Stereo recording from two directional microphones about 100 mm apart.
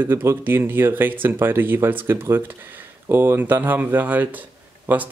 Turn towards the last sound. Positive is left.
turn(degrees=-20)  # may be behind; listen again after turning